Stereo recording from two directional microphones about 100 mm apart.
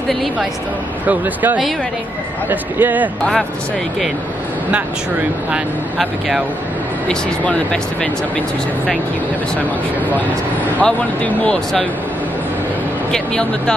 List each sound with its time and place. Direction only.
0.1 s a man's voice: centre (ahead or behind)
1.0 s a man's voice: 15° right (ahead or behind)
5.9 s a man's voice: centre (ahead or behind)
10.8 s speech: 10° left (ahead or behind)
13.1 s speech: 10° left (ahead or behind)